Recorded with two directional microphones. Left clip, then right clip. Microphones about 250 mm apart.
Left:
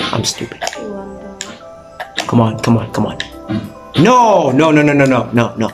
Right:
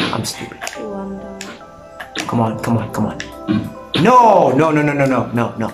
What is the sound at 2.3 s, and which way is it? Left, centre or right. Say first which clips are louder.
Speech: left 4 dB; centre.